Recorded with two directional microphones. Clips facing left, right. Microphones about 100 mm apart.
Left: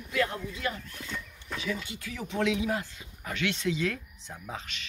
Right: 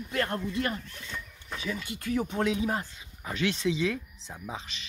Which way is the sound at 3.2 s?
20° right (ahead or behind).